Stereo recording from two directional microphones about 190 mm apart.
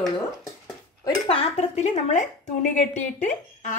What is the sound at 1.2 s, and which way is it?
A woman's voice, 30° left (ahead or behind).